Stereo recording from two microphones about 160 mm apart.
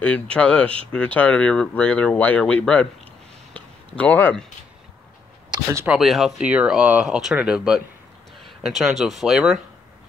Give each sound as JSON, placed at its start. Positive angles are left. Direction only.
{"t": 0.0, "sound": "speech", "side_deg": 5}
{"t": 3.5, "sound": "a sound", "side_deg": 10}
{"t": 5.5, "sound": "speech", "side_deg": -20}
{"t": 5.9, "sound": "speech", "side_deg": 0}